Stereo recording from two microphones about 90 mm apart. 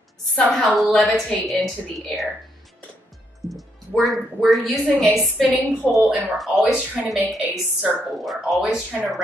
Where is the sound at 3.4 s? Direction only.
35° right (ahead or behind).